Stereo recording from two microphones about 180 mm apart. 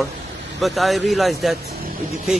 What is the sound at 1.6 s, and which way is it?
Vehicle, 60° right (ahead or behind).